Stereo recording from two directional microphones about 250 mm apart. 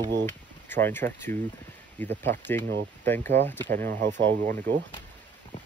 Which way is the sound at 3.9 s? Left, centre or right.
Right.